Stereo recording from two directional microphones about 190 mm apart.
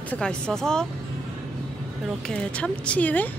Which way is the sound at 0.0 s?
5° left (ahead or behind).